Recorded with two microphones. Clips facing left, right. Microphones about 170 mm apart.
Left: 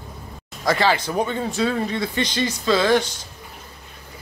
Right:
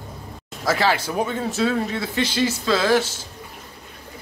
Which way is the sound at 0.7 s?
5° right (ahead or behind).